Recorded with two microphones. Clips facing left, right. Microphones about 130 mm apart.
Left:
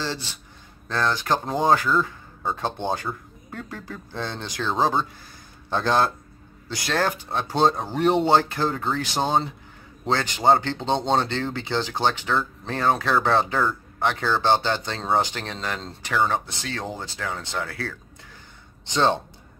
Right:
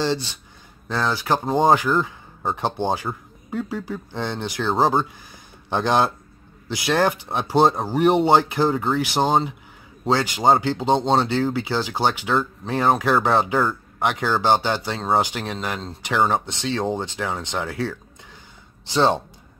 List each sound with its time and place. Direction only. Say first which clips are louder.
0.8 s speech: right 1 dB; 10° right (ahead or behind)
16.3 s speech: right 4 dB; 20° right (ahead or behind)